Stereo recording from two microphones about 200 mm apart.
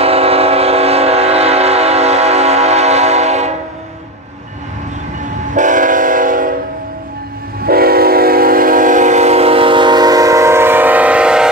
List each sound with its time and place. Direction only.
0.0 s train: 30° right (ahead or behind)
5.5 s train: 40° right (ahead or behind)
7.6 s train: 50° right (ahead or behind); by 11.4 s 5° right (ahead or behind)